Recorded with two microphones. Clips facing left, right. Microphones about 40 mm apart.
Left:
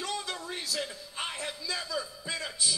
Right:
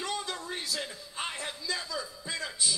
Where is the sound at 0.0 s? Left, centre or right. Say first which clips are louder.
Even; centre.